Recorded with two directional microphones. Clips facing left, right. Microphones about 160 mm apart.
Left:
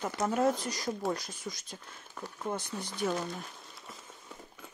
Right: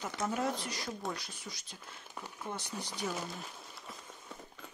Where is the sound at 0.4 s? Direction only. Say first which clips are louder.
Left 6 dB; 40° left (ahead or behind).